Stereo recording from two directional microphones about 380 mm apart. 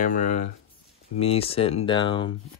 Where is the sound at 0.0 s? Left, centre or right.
Centre.